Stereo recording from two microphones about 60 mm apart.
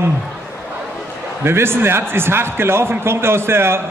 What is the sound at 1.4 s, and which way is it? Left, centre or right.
A man's voice, right.